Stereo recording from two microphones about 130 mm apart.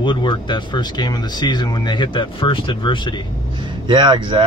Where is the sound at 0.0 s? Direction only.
35° left (ahead or behind).